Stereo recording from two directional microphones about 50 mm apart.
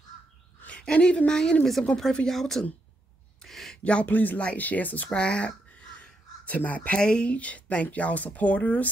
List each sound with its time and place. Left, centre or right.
0.9 s speech: left; by 2.6 s centre
3.4 s a sound: centre
3.8 s speech: left
5.1 s speech: left
5.9 s crow: left
7.0 s speech: centre